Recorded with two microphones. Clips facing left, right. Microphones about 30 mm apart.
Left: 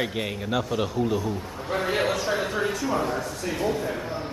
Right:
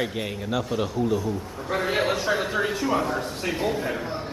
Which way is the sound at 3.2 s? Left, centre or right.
Right.